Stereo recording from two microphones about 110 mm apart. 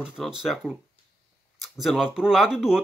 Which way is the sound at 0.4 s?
Centre (ahead or behind).